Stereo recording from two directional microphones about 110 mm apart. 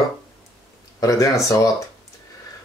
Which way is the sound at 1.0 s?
30° left (ahead or behind).